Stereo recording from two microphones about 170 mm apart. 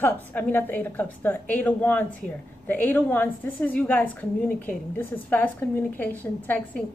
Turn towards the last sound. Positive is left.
turn(degrees=10)  # may be behind; listen again after turning